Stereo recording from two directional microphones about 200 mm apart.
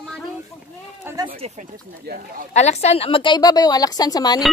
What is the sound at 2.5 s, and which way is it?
A woman's voice, 35° left (ahead or behind).